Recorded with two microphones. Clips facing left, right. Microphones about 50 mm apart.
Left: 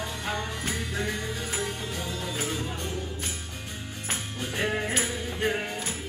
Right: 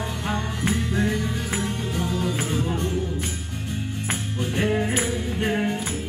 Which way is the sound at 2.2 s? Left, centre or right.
Right.